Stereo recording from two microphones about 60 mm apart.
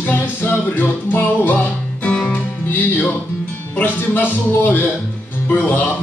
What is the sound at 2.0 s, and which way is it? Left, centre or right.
Music, centre.